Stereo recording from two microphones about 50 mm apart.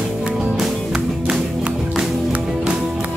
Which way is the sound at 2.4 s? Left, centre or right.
Centre.